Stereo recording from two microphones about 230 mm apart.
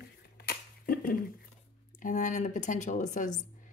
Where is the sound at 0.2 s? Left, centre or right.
Left.